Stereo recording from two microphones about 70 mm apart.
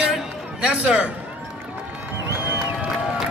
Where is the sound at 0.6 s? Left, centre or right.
Centre.